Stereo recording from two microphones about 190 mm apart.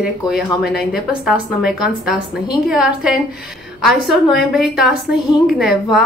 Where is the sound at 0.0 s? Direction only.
5° right (ahead or behind).